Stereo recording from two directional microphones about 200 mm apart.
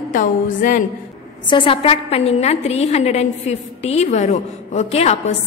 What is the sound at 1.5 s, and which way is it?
A woman's voice, 25° left (ahead or behind).